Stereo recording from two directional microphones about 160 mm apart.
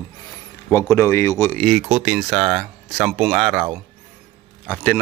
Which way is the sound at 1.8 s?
5° right (ahead or behind).